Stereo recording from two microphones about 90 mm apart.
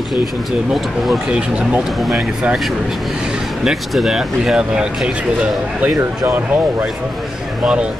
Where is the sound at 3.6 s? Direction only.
5° right (ahead or behind).